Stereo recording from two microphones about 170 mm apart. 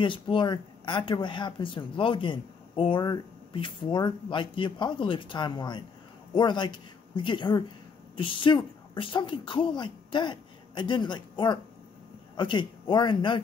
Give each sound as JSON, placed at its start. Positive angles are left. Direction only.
{"t": 0.0, "sound": "a woman's voice", "side_deg": 30}